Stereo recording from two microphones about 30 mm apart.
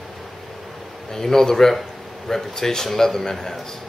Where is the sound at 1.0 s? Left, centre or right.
Centre.